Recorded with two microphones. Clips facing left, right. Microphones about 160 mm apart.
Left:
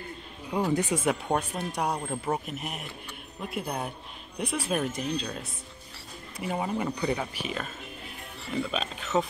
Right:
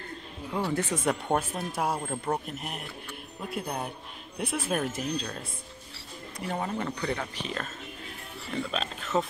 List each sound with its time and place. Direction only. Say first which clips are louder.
0.5 s speech: left 3 dB; 15° left (ahead or behind)
1.0 s speech: even; centre (ahead or behind)